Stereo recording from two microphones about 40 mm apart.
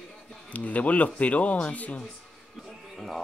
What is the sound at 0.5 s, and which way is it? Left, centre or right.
Speech, left.